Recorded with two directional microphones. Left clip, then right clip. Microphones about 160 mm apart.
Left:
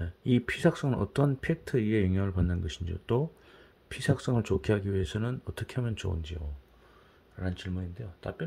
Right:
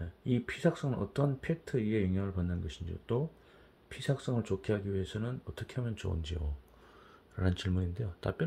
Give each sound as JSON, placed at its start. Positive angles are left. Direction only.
{"t": 0.0, "sound": "speech", "side_deg": 35}
{"t": 7.3, "sound": "speech", "side_deg": -25}